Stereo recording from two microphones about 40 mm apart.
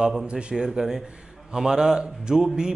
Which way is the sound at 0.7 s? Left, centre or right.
Centre.